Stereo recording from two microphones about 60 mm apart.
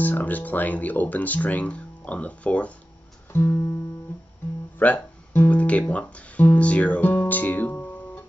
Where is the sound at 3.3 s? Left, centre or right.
Left.